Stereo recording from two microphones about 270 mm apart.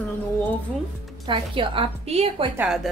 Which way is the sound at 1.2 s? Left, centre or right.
Centre.